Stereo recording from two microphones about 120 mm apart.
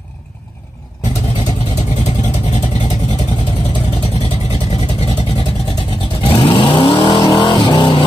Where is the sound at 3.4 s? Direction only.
55° left (ahead or behind); by 8.0 s 40° left (ahead or behind).